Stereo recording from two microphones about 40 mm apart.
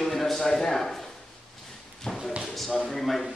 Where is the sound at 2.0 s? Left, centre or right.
Centre.